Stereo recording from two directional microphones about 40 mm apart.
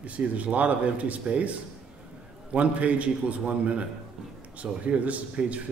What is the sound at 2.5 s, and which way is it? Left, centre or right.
Speech, right.